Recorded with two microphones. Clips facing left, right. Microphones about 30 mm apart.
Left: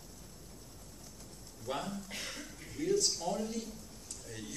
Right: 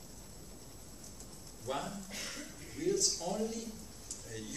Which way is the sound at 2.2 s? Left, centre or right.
Centre.